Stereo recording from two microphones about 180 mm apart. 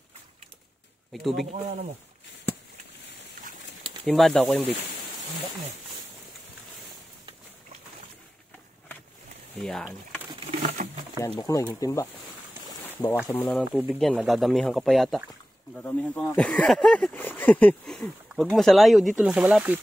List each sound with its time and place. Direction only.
1.1 s speech: centre (ahead or behind)
4.0 s speech: centre (ahead or behind)
9.6 s speech: 5° left (ahead or behind)
10.5 s crumpling: 45° right (ahead or behind)
11.1 s speech: 15° left (ahead or behind)
12.8 s boat: 10° left (ahead or behind)
13.3 s speech: 10° left (ahead or behind); by 19.8 s 10° right (ahead or behind)